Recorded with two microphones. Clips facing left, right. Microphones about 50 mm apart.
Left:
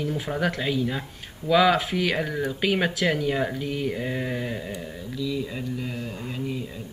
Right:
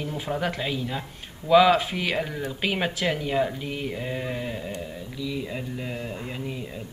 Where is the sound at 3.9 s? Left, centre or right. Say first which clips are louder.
Left 2 dB; centre.